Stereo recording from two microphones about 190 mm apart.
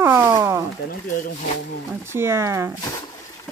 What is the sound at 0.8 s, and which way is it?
Speech, 45° left (ahead or behind).